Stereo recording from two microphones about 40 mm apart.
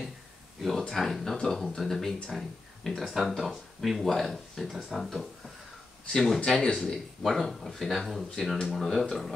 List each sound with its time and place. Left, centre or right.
0.6 s speech: centre
4.0 s speech: centre
6.4 s speech: centre
7.2 s speech: centre